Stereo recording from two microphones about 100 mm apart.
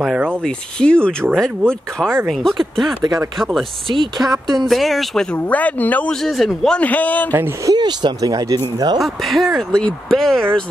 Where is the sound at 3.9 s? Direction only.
50° right (ahead or behind).